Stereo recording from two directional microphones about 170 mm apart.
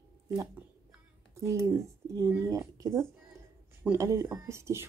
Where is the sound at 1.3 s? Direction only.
15° right (ahead or behind).